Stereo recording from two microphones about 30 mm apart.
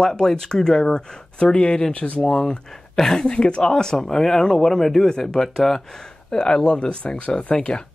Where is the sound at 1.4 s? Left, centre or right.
Left.